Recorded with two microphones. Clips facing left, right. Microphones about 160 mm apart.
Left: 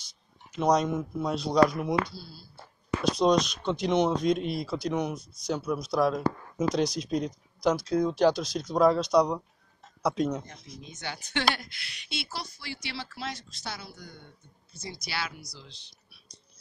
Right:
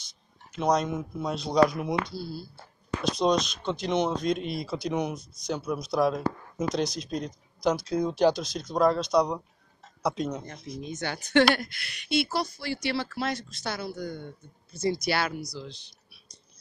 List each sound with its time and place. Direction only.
0.7 s speech: 10° left (ahead or behind)
3.1 s speech: 10° left (ahead or behind)
6.7 s speech: 10° left (ahead or behind)
10.8 s speech: 50° right (ahead or behind)